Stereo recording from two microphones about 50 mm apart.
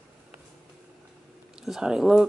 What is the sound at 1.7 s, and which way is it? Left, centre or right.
Speech, centre.